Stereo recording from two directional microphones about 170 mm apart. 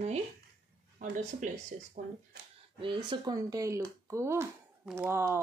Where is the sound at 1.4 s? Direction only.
45° right (ahead or behind).